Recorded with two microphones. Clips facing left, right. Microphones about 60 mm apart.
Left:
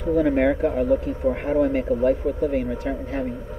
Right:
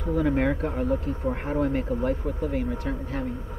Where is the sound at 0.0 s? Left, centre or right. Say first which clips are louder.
Left 5 dB; centre.